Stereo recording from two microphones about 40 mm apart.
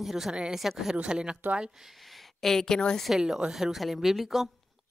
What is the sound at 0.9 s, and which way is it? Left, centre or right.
Speech, right.